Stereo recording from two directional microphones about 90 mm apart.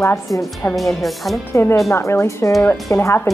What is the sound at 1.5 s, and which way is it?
Speech, 30° left (ahead or behind).